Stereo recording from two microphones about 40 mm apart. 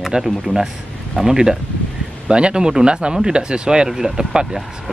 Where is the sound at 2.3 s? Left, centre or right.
Right.